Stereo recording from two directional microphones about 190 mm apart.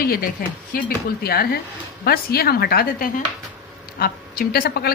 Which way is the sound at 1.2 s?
55° left (ahead or behind).